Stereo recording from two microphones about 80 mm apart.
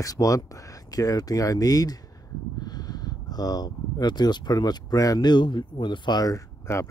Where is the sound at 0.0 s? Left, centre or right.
Left.